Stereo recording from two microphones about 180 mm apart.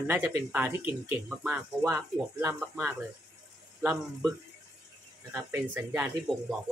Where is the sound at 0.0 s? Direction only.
15° right (ahead or behind).